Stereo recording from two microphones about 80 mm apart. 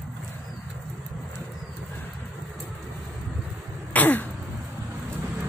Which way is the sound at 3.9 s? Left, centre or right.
Left.